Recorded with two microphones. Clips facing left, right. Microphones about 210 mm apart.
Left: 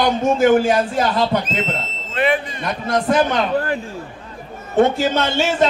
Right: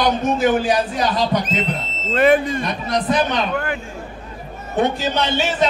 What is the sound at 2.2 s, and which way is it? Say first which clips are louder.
Speech: right 5 dB; 45° right (ahead or behind).